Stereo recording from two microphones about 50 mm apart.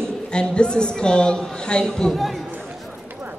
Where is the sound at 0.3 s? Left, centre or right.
Centre.